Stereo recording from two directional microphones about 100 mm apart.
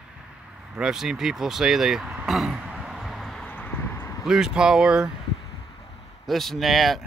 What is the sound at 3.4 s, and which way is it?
Vehicle, 15° left (ahead or behind).